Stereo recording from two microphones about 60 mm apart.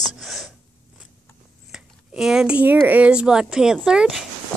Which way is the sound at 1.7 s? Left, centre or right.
Centre.